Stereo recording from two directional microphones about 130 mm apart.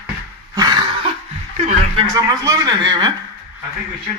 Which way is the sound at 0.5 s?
35° right (ahead or behind).